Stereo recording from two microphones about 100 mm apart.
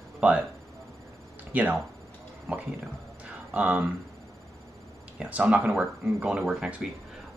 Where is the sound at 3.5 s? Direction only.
10° right (ahead or behind).